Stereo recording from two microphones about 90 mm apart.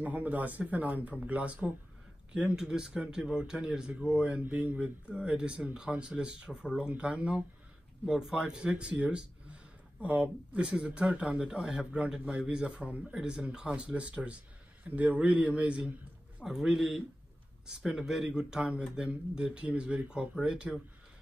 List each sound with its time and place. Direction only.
0.0 s a man's voice: 20° right (ahead or behind)